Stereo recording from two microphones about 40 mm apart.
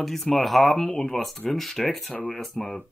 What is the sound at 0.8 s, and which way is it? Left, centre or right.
Speech, centre.